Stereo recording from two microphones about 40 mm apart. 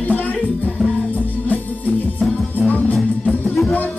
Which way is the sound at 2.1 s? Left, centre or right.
Left.